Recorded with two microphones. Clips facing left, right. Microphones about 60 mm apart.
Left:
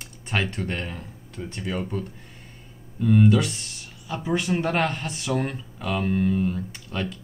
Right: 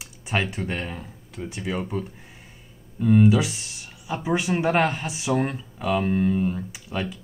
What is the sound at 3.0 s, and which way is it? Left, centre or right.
Speech, centre.